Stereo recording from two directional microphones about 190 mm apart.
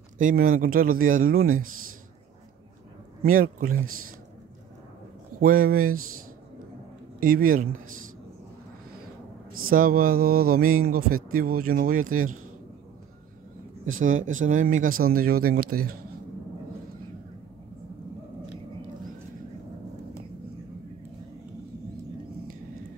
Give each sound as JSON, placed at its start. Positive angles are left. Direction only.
{"t": 0.2, "sound": "speech", "side_deg": -45}
{"t": 3.2, "sound": "speech", "side_deg": -45}
{"t": 5.4, "sound": "speech", "side_deg": -50}
{"t": 7.2, "sound": "speech", "side_deg": -50}
{"t": 9.7, "sound": "speech", "side_deg": -50}
{"t": 13.9, "sound": "speech", "side_deg": -45}